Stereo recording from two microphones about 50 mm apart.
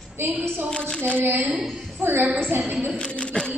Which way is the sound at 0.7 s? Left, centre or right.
Centre.